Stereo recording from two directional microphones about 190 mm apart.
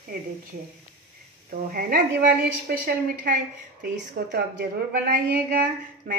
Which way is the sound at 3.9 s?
65° right (ahead or behind).